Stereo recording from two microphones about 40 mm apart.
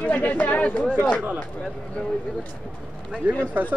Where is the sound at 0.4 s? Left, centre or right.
Left.